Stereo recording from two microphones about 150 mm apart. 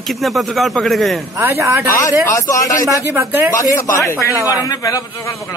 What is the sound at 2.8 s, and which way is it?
Speech, 20° right (ahead or behind).